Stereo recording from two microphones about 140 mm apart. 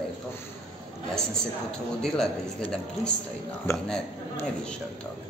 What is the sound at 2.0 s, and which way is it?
Speech, 5° left (ahead or behind).